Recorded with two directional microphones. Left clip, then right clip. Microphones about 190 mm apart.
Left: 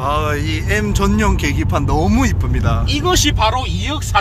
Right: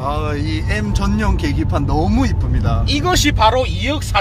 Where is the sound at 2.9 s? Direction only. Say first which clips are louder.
Even; 55° right (ahead or behind).